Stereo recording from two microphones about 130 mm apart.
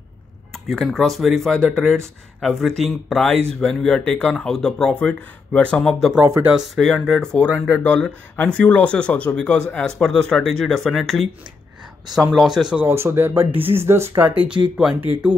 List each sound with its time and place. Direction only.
0.5 s speech: centre (ahead or behind)
12.7 s speech: 15° right (ahead or behind)